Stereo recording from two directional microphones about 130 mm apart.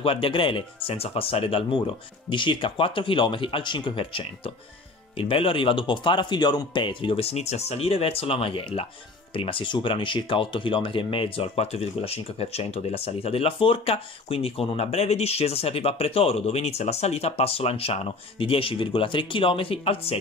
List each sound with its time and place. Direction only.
0.0 s speech: 45° left (ahead or behind)